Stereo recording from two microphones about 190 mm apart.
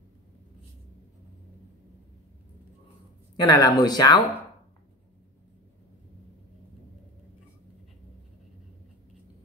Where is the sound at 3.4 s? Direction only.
20° left (ahead or behind).